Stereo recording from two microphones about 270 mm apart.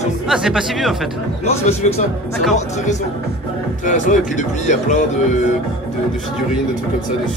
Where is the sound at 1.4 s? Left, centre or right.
Left.